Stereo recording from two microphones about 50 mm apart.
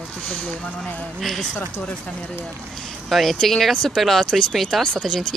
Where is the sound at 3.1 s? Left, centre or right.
Centre.